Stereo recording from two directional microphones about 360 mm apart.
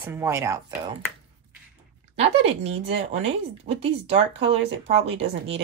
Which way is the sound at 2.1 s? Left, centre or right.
Centre.